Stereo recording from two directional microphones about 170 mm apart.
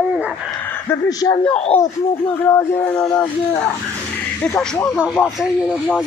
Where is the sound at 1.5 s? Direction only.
10° left (ahead or behind).